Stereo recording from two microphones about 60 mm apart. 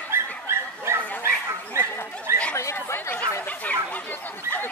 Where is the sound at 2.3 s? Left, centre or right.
Right.